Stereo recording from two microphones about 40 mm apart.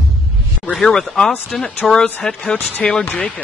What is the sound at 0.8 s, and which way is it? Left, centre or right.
Speech, centre.